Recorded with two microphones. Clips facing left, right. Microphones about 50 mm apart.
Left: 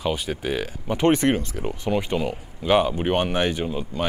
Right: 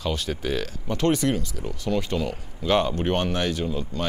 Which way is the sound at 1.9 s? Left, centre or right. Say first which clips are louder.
Left 1 dB; left.